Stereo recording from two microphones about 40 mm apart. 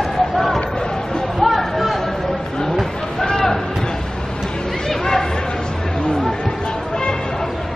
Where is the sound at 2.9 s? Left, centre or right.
Centre.